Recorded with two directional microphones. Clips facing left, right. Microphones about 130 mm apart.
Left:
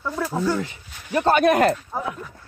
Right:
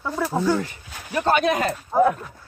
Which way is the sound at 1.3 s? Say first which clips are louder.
Left 4 dB; 50° left (ahead or behind).